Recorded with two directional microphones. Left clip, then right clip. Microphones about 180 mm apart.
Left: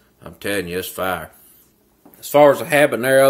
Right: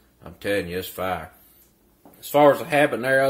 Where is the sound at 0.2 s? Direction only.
20° left (ahead or behind).